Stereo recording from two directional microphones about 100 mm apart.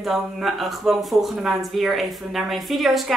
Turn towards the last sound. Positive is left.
turn(degrees=0)  # may be behind; listen again after turning